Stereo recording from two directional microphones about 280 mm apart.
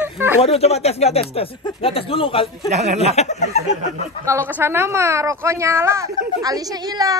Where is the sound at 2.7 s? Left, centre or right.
Right.